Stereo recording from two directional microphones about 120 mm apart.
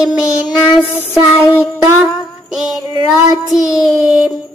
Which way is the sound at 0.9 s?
15° left (ahead or behind).